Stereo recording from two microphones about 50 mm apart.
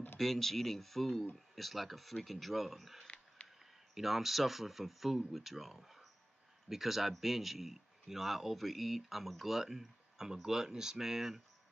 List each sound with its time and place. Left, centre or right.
0.2 s speech: centre
3.4 s a sound: left
3.9 s speech: centre